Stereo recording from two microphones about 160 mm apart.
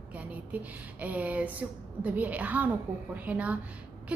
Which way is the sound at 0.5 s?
10° right (ahead or behind).